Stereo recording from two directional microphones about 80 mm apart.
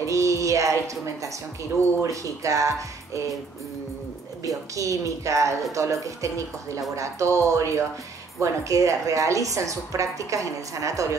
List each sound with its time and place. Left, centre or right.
0.0 s a woman's voice: right
4.7 s a woman's voice: right